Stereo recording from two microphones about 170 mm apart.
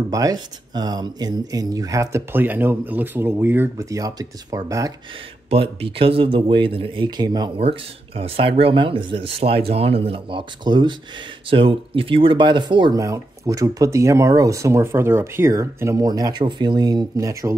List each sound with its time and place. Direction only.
0.1 s speech: 20° right (ahead or behind)
5.5 s speech: 35° right (ahead or behind); by 17.6 s 20° right (ahead or behind)